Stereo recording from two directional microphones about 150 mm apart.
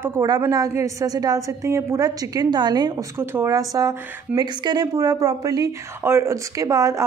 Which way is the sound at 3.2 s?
15° right (ahead or behind).